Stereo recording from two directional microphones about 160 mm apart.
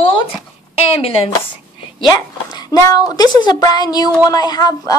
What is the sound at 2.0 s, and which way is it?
A woman's voice, 25° left (ahead or behind).